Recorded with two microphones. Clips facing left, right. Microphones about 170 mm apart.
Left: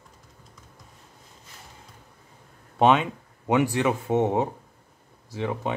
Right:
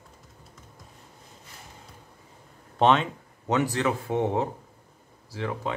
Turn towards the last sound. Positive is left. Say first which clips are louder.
# left 2 dB
turn(degrees=20)  # may be behind; listen again after turning